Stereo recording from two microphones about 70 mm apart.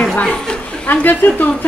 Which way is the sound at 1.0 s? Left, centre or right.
Left.